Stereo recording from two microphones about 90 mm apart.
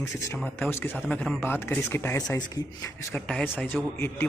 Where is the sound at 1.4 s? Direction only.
25° left (ahead or behind).